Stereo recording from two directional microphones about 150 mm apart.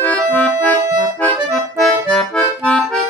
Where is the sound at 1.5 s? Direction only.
5° left (ahead or behind).